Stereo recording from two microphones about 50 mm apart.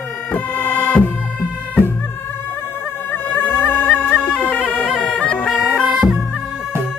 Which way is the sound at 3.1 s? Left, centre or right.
Left.